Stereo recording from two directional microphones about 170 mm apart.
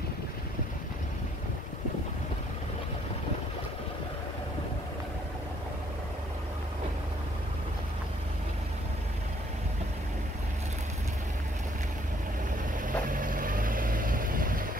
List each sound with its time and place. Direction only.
12.8 s vehicle: 50° right (ahead or behind)